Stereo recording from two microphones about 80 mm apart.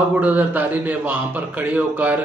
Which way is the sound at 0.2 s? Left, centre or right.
Centre.